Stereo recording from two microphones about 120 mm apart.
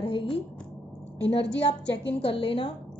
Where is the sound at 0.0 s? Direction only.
45° left (ahead or behind).